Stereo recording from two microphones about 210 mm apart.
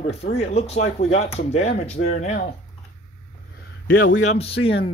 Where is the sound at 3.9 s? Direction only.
45° left (ahead or behind).